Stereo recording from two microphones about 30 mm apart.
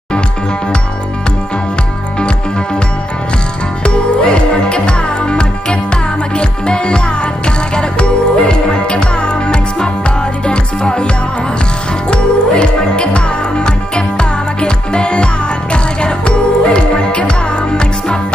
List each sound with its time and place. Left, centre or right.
2.1 s music: left
3.8 s music: left
12.1 s music: left